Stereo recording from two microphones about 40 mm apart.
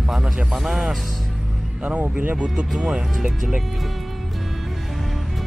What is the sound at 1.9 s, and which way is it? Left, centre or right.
Speech, right.